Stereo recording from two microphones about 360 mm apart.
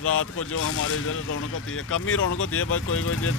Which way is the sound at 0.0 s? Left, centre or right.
Left.